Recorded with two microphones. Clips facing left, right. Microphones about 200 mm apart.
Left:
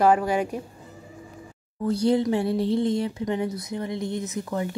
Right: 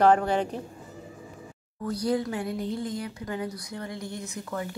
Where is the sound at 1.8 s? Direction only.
25° left (ahead or behind).